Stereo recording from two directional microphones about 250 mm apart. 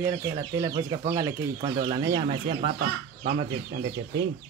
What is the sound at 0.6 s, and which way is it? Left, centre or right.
Speech, centre.